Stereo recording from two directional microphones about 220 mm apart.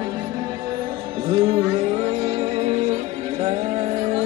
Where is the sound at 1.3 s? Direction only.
25° right (ahead or behind).